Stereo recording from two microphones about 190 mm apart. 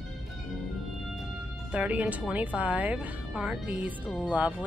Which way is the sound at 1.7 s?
5° right (ahead or behind).